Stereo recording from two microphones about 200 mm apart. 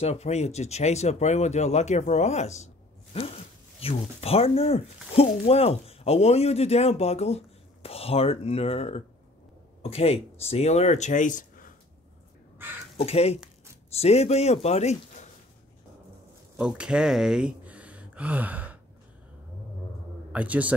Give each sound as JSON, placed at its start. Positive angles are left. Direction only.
{"t": 0.0, "sound": "speech", "side_deg": 35}
{"t": 12.6, "sound": "speech", "side_deg": -10}
{"t": 12.9, "sound": "a man's voice", "side_deg": 30}
{"t": 16.5, "sound": "speech", "side_deg": -5}
{"t": 20.3, "sound": "a man's voice", "side_deg": -5}